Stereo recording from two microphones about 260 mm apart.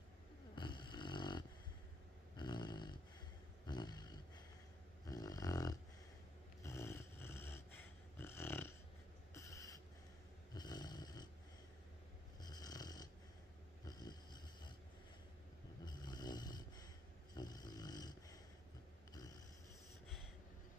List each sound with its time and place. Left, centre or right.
0.6 s snoring: centre
2.3 s dog: centre
3.6 s a sound: centre
6.6 s snoring: centre
9.3 s owl: centre
10.5 s snoring: centre
12.4 s snoring: centre
15.8 s snoring: centre